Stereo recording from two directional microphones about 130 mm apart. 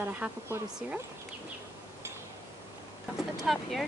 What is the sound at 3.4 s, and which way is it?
Speech, centre (ahead or behind).